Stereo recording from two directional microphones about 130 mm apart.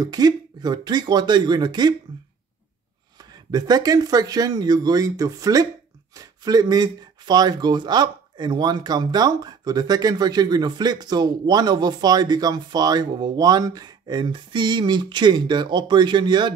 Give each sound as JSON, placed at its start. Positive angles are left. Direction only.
{"t": 0.0, "sound": "speech", "side_deg": -30}
{"t": 3.2, "sound": "speech", "side_deg": -30}